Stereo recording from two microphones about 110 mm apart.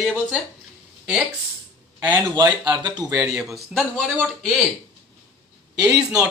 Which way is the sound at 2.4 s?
40° right (ahead or behind).